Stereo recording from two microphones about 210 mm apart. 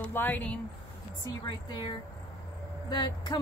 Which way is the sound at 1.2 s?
20° left (ahead or behind).